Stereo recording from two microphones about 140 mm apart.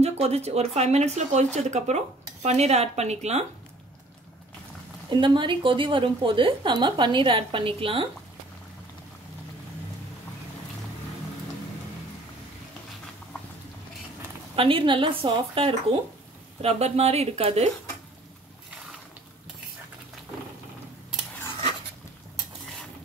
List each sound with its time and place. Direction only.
0.0 s speech: 50° right (ahead or behind)
5.1 s speech: 35° right (ahead or behind)
14.5 s speech: 40° right (ahead or behind)